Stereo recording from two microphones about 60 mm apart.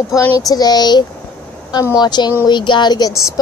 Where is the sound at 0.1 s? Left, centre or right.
Left.